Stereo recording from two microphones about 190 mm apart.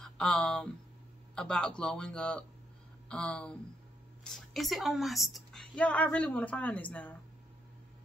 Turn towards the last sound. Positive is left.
turn(degrees=10)  # may be behind; listen again after turning